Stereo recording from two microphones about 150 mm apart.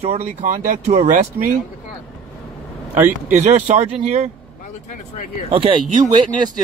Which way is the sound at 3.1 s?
50° right (ahead or behind).